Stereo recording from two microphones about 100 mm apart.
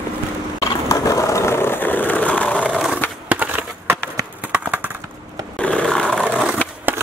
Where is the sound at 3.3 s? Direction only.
15° right (ahead or behind).